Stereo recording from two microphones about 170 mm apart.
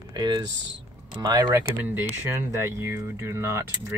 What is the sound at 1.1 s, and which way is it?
Speech, 20° right (ahead or behind).